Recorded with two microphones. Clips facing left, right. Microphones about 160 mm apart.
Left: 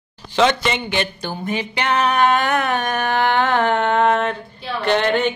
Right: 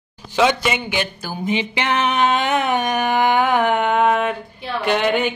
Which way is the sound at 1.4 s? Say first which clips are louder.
Right 1 dB; 20° right (ahead or behind).